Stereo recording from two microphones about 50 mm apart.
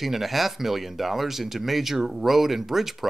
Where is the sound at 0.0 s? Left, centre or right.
Centre.